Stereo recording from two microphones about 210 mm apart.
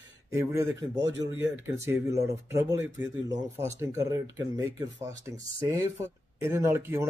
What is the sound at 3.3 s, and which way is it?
Speech, 35° right (ahead or behind).